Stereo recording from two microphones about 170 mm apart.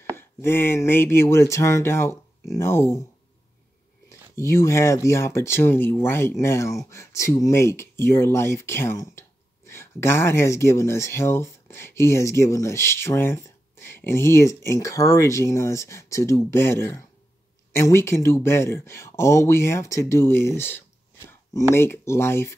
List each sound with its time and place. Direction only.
0.1 s speech: 15° left (ahead or behind)
4.4 s speech: 15° left (ahead or behind)